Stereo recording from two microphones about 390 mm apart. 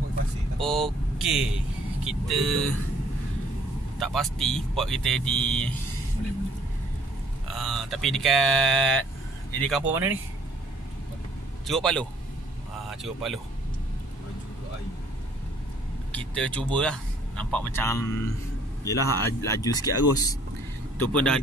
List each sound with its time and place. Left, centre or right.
0.6 s vehicle: centre
2.0 s speech: centre
4.0 s speech: centre
7.4 s speech: centre
11.6 s speech: centre
16.1 s speech: centre